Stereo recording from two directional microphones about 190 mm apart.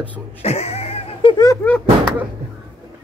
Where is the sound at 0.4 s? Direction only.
35° left (ahead or behind).